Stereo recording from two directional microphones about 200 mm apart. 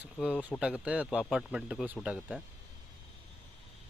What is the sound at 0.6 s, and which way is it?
Speech, 5° right (ahead or behind).